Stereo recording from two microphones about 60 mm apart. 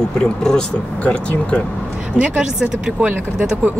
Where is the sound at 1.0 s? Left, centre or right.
Left.